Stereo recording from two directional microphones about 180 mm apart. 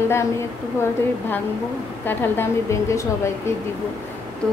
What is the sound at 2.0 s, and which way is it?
A woman's voice, 15° left (ahead or behind).